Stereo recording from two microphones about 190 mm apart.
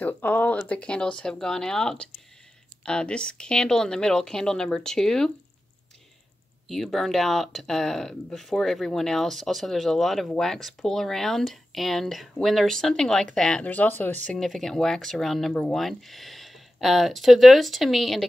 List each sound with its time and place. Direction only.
0.0 s speech: 10° left (ahead or behind)
6.7 s speech: centre (ahead or behind)